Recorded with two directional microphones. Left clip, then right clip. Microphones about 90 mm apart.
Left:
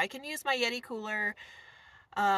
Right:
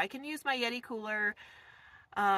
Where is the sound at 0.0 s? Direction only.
25° left (ahead or behind).